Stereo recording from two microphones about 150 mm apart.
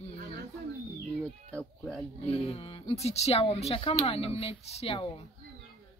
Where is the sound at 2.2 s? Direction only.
40° left (ahead or behind).